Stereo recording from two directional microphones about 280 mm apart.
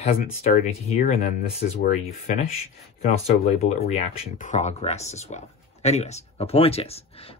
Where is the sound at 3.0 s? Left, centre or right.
Left.